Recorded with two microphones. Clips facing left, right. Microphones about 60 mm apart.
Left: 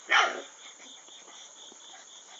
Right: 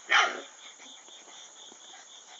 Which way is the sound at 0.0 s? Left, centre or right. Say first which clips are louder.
Even; centre.